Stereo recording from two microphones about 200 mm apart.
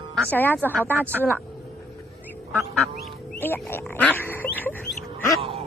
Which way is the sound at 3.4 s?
10° left (ahead or behind).